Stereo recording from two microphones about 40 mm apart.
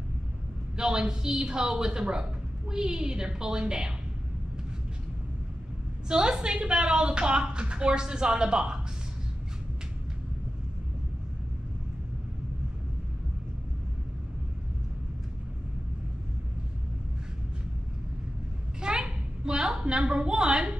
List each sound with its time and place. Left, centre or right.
0.7 s a woman's voice: centre
6.0 s a woman's voice: centre
18.8 s a sound: right